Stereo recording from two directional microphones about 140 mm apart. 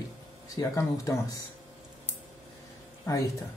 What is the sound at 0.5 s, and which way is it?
Speech, 25° left (ahead or behind).